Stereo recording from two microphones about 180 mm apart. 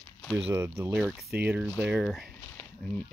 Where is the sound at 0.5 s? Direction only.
15° right (ahead or behind).